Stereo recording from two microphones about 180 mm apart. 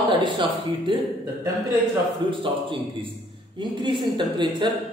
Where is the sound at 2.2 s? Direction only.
30° right (ahead or behind).